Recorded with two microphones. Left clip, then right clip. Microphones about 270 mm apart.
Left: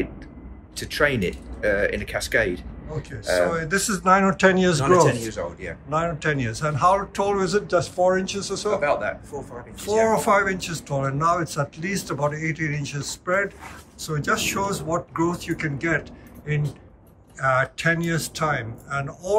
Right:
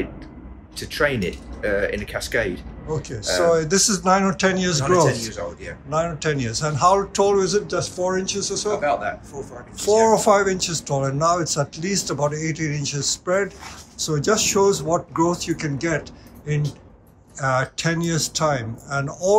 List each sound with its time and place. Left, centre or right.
0.7 s a man's voice: centre
3.4 s a man's voice: centre
5.3 s speech: left
5.9 s a man's voice: centre
8.8 s speech: left
9.8 s speech: centre